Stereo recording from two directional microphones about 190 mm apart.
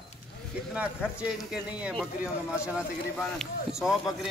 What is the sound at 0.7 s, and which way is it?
Speech, 5° right (ahead or behind).